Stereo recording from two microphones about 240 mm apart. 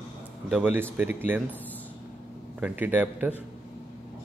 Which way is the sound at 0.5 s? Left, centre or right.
Centre.